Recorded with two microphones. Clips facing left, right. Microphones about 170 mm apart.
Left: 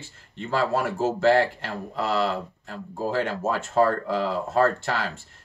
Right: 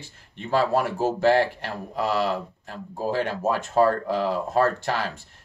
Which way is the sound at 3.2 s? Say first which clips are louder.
Right 1 dB; 15° right (ahead or behind).